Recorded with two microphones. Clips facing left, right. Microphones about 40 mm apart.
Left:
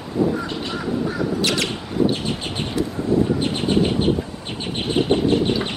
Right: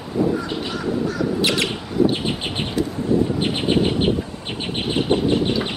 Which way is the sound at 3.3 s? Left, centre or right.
Right.